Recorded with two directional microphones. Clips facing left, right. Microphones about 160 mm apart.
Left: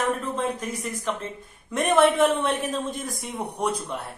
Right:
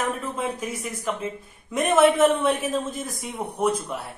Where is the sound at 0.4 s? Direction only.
5° right (ahead or behind).